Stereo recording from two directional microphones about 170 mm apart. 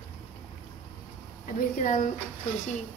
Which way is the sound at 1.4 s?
50° left (ahead or behind).